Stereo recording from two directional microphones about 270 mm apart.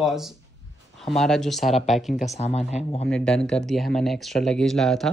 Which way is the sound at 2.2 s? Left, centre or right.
Left.